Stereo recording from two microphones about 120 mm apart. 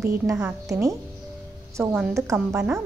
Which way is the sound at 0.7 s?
25° right (ahead or behind).